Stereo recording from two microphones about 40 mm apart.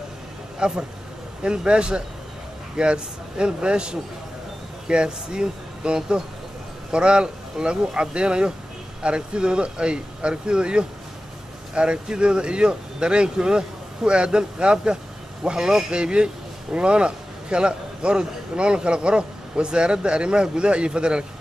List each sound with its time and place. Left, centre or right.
0.6 s a man's voice: right